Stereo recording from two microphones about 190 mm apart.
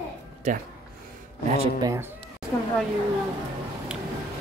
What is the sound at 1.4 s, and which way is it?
Speech, 35° right (ahead or behind).